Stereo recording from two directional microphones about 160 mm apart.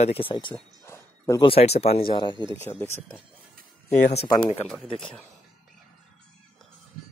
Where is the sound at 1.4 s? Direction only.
35° left (ahead or behind).